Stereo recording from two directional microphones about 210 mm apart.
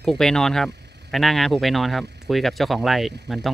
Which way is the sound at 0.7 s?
55° right (ahead or behind).